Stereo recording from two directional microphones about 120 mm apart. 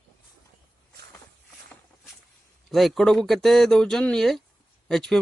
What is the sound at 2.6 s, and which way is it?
Speech, centre (ahead or behind).